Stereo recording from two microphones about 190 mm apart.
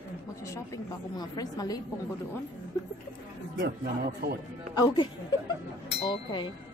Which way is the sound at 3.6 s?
60° right (ahead or behind).